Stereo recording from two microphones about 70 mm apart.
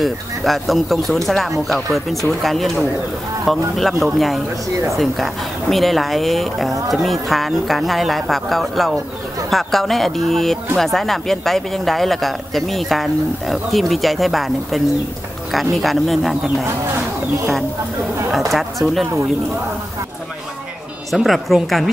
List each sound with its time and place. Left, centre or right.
0.0 s speech: centre
18.5 s speech: centre
21.1 s speech: centre